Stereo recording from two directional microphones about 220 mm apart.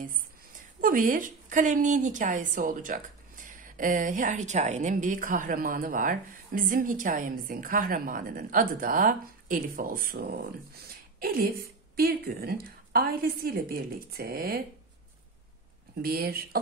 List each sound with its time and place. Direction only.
0.0 s a woman's voice: 35° right (ahead or behind)
16.0 s a woman's voice: 40° right (ahead or behind)